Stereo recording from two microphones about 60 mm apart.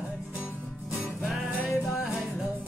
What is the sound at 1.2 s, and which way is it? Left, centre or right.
Music, centre.